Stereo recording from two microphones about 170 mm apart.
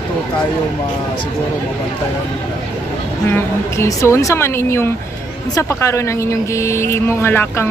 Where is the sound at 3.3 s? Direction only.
15° left (ahead or behind).